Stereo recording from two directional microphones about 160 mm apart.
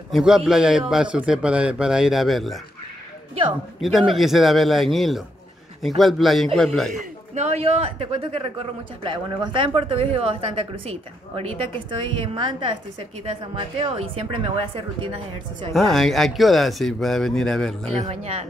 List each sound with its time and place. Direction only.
0.1 s speech: centre (ahead or behind)
3.8 s speech: centre (ahead or behind)
6.9 s a woman's voice: 45° right (ahead or behind)
15.7 s speech: centre (ahead or behind)
17.9 s speech: 40° right (ahead or behind)